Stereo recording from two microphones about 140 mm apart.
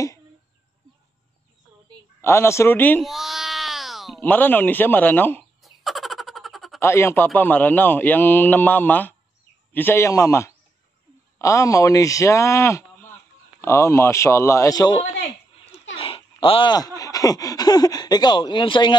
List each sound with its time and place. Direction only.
2.2 s speech: 20° left (ahead or behind)
3.0 s baby cry: centre (ahead or behind)
4.2 s a man's voice: 10° left (ahead or behind)
5.6 s a sound: centre (ahead or behind)
6.8 s a man's voice: 20° left (ahead or behind)
15.2 s speech: 40° left (ahead or behind)